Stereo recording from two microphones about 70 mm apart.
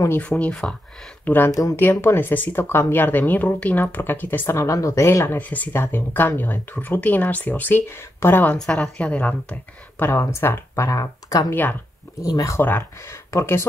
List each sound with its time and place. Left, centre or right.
0.4 s a woman's voice: centre
1.2 s speech: left
1.5 s speech: left
1.8 s speech: left
4.5 s speech: left
5.4 s speech: left
8.5 s a woman's voice: centre
10.1 s speech: left
10.9 s speech: left
12.5 s speech: left
13.3 s speech: left